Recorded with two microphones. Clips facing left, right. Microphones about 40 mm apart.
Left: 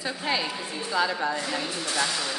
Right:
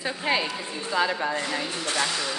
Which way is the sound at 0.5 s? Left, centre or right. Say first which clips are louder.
Even; centre.